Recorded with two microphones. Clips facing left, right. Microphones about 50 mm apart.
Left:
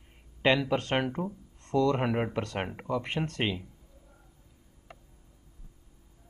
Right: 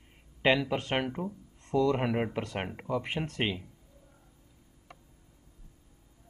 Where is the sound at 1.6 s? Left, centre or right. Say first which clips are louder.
Left 1 dB; centre.